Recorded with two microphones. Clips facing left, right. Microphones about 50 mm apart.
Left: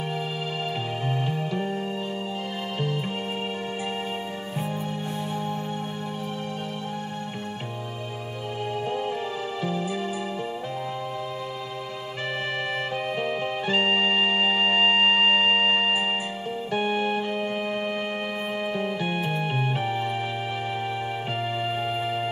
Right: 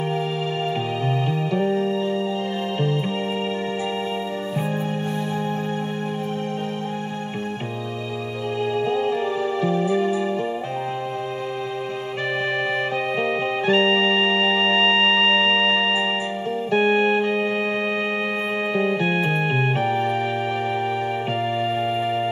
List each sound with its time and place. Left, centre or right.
1.0 s music: right
8.7 s music: right
13.2 s music: right
18.7 s music: right
21.5 s music: centre